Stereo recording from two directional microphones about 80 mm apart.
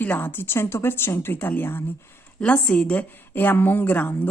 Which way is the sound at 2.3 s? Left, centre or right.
Centre.